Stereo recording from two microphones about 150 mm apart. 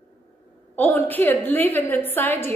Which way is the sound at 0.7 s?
10° left (ahead or behind).